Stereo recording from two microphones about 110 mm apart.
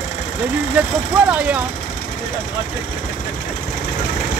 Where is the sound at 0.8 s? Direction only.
15° right (ahead or behind).